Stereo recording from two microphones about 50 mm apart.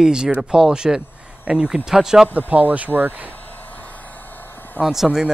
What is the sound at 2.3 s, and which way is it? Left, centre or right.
Speech, right.